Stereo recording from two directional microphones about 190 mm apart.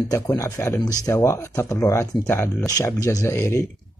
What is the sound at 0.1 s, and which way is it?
Speech, 15° left (ahead or behind).